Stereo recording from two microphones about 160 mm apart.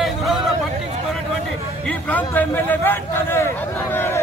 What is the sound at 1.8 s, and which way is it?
A man's voice, 10° left (ahead or behind).